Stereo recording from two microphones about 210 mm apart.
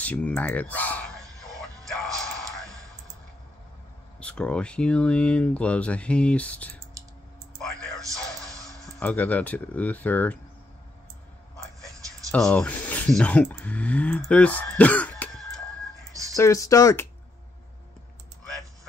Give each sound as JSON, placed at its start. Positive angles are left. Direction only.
{"t": 0.0, "sound": "speech", "side_deg": 5}
{"t": 2.1, "sound": "music", "side_deg": 0}
{"t": 4.2, "sound": "speech", "side_deg": 5}
{"t": 7.5, "sound": "a sound", "side_deg": 0}
{"t": 8.1, "sound": "music", "side_deg": 0}
{"t": 8.5, "sound": "speech", "side_deg": 0}
{"t": 12.3, "sound": "speech", "side_deg": 0}
{"t": 16.1, "sound": "a sound", "side_deg": -15}
{"t": 16.3, "sound": "speech", "side_deg": 15}